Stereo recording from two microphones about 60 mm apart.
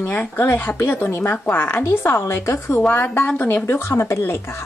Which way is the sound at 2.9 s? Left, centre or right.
Left.